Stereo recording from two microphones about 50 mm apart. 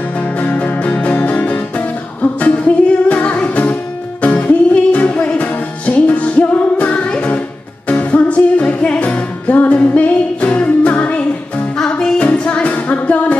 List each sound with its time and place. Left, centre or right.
0.2 s music: left